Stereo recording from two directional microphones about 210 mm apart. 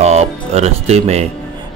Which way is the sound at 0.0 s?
30° right (ahead or behind).